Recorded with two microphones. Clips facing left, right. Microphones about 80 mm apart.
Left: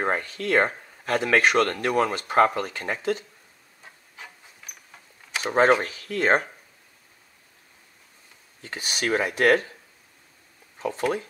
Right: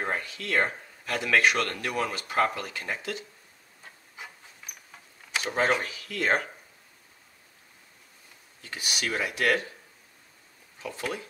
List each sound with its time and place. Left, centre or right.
0.0 s speech: left
5.4 s speech: left
8.6 s speech: left
10.8 s speech: left